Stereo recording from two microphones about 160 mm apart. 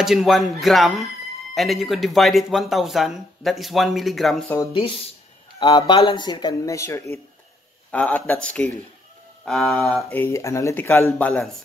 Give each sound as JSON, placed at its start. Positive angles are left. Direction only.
{"t": 0.0, "sound": "speech", "side_deg": 0}
{"t": 5.6, "sound": "speech", "side_deg": 30}
{"t": 7.9, "sound": "speech", "side_deg": 10}
{"t": 10.1, "sound": "speech", "side_deg": 15}